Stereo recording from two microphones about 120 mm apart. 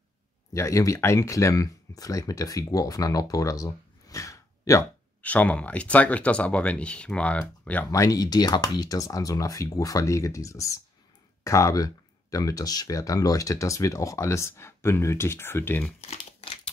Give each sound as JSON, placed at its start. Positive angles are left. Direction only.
{"t": 0.5, "sound": "speech", "side_deg": 25}
{"t": 5.2, "sound": "speech", "side_deg": 10}
{"t": 7.9, "sound": "speech", "side_deg": 30}